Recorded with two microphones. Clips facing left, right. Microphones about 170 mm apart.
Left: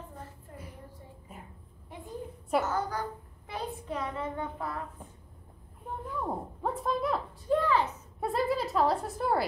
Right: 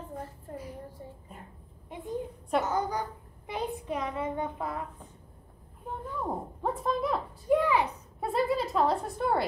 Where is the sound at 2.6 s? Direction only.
15° right (ahead or behind).